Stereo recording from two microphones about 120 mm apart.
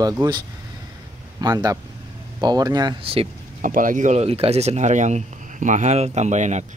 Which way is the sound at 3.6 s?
90° right.